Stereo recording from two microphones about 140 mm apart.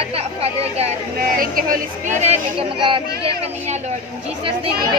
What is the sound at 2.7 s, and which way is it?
Speech, 40° right (ahead or behind).